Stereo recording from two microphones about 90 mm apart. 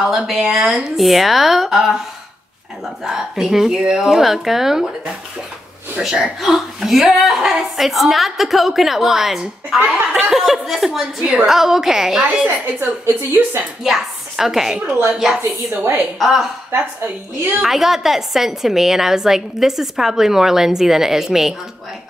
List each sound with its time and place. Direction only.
0.0 s a woman's voice: 5° right (ahead or behind)
3.0 s a woman's voice: 5° right (ahead or behind)
5.9 s a woman's voice: 5° right (ahead or behind)
12.2 s a woman's voice: 15° right (ahead or behind)
13.0 s a woman's voice: 25° right (ahead or behind)
13.8 s a woman's voice: 5° right (ahead or behind)
17.6 s a woman's voice: 5° right (ahead or behind)